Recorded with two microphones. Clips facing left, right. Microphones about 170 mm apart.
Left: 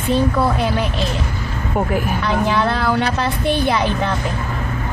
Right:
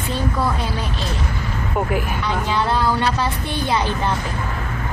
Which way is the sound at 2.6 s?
70° left (ahead or behind).